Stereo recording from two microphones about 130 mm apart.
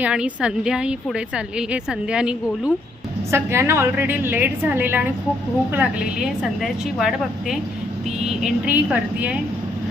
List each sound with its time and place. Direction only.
0.0 s a woman's voice: 5° right (ahead or behind)
3.3 s a woman's voice: 20° right (ahead or behind)